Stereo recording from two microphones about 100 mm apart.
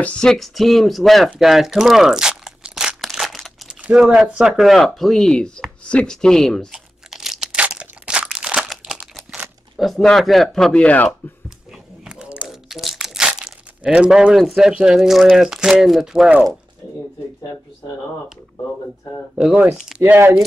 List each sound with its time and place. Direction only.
0.0 s a sound: 10° left (ahead or behind)
4.2 s speech: 5° right (ahead or behind)
6.7 s crunch: 5° right (ahead or behind)
8.6 s crumpling: 5° right (ahead or behind)
9.8 s speech: centre (ahead or behind)
12.0 s crumpling: 10° right (ahead or behind)
15.8 s speech: 5° right (ahead or behind)
19.3 s speech: 10° right (ahead or behind)
20.0 s speech: 25° right (ahead or behind)